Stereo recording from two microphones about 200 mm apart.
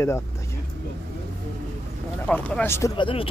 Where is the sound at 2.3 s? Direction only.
5° left (ahead or behind).